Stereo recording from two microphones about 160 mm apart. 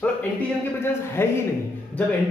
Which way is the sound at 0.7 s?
15° left (ahead or behind).